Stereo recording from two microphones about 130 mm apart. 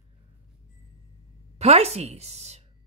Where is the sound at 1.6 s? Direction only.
55° right (ahead or behind).